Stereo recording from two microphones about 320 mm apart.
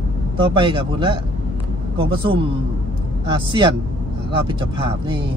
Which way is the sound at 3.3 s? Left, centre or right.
Centre.